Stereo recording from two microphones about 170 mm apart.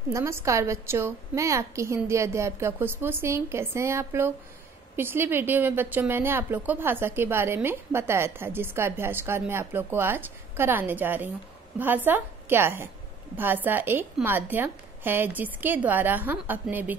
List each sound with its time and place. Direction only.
0.1 s a woman's voice: 15° right (ahead or behind)